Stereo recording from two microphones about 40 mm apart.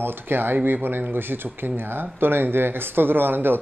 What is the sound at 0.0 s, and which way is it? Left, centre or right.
Speech, right.